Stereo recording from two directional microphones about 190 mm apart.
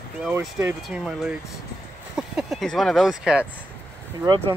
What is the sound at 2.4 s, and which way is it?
Speech, centre (ahead or behind).